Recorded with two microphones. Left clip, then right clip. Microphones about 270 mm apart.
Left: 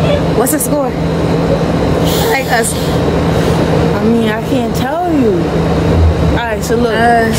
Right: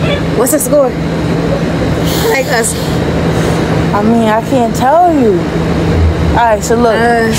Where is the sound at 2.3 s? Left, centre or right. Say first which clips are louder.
Right 3 dB; centre.